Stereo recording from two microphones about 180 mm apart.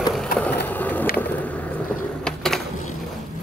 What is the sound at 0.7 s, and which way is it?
Vehicle, 10° left (ahead or behind).